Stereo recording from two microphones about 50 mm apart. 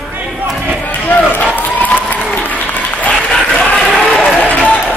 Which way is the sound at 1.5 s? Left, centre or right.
Left.